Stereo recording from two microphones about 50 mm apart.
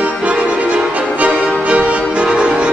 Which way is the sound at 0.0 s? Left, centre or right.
Right.